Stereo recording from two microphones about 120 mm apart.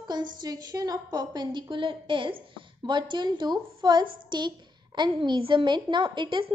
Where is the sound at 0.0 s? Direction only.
40° right (ahead or behind).